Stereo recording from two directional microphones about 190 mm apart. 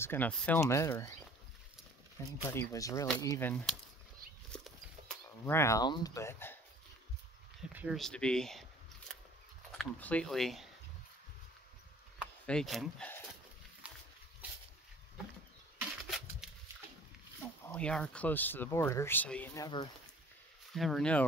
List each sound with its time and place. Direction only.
0.0 s speech: 10° left (ahead or behind)
2.2 s speech: 15° left (ahead or behind)
4.5 s a sound: centre (ahead or behind)
5.4 s speech: 15° left (ahead or behind)
7.7 s a sound: 5° right (ahead or behind)
9.7 s speech: 5° left (ahead or behind)
12.4 s speech: centre (ahead or behind)
13.8 s a sound: 5° right (ahead or behind)
17.7 s speech: 5° left (ahead or behind)
19.5 s speech: 20° left (ahead or behind)
20.7 s speech: centre (ahead or behind)